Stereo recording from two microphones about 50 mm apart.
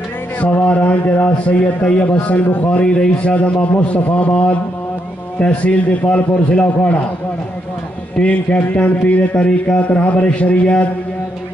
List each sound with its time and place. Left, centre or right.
0.4 s a sound: left
1.8 s a man's voice: left
2.8 s a man's voice: left
8.2 s a man's voice: left